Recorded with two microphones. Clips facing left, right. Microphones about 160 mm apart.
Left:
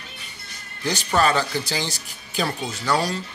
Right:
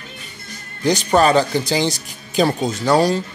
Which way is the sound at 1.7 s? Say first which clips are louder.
Right 9 dB; 15° right (ahead or behind).